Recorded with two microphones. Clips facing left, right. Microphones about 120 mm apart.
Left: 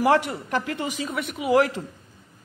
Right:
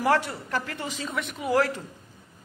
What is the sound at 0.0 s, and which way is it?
Speech, 20° left (ahead or behind).